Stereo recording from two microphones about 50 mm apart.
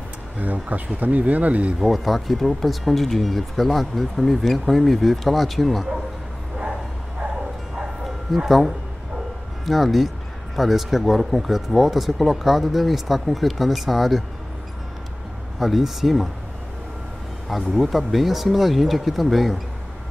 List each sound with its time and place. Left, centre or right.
0.4 s speech: right
1.8 s speech: centre
8.5 s speech: centre
15.6 s speech: centre
17.5 s speech: centre